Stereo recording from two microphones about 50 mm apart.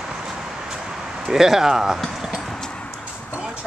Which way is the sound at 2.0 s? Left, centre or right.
Centre.